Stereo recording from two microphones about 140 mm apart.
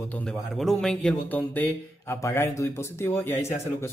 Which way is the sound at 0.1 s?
5° left (ahead or behind).